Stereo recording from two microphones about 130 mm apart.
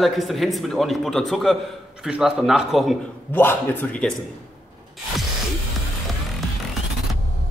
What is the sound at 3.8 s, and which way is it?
Speech, 10° left (ahead or behind).